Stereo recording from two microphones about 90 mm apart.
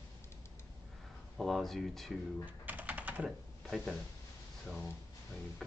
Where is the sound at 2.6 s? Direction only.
15° right (ahead or behind).